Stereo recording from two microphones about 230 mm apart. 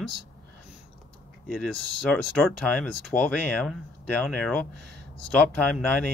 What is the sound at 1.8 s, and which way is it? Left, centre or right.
Speech, left.